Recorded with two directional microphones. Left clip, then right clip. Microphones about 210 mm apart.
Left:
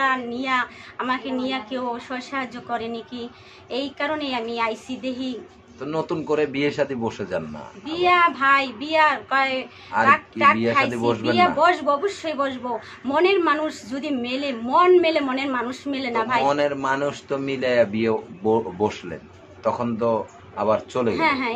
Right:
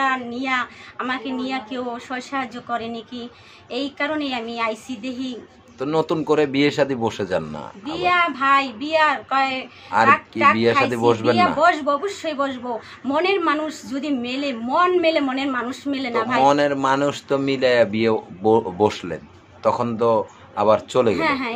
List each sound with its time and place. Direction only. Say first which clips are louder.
0.0 s a man's voice: right 1 dB; centre (ahead or behind)
5.8 s speech: right 5 dB; 35° right (ahead or behind)
7.8 s a man's voice: left 1 dB; centre (ahead or behind)
9.9 s speech: right 2 dB; 35° right (ahead or behind)
11.6 s a man's voice: right 1 dB; centre (ahead or behind)
16.4 s speech: right 4 dB; 40° right (ahead or behind)
21.1 s a man's voice: even; centre (ahead or behind)